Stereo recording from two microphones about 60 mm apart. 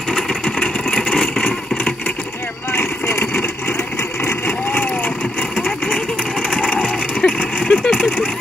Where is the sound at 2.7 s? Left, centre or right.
Left.